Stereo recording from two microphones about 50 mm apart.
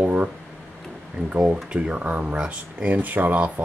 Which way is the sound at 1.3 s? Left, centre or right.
Right.